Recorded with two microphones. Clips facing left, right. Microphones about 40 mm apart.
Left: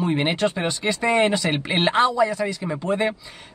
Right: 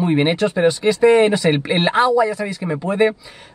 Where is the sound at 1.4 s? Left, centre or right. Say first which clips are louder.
Right 7 dB; centre.